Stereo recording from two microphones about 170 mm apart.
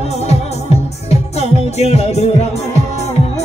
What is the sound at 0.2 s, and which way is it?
Music, 40° left (ahead or behind).